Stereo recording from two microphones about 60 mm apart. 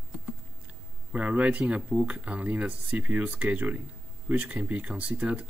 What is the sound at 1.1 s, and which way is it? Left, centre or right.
Speech, right.